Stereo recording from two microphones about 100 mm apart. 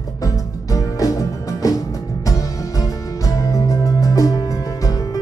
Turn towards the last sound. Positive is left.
turn(degrees=35)  # may be behind; listen again after turning